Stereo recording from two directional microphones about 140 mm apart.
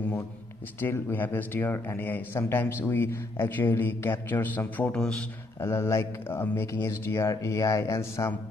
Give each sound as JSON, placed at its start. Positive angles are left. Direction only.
{"t": 0.7, "sound": "speech", "side_deg": 15}